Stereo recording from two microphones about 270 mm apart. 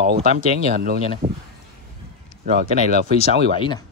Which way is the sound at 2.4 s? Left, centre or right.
Right.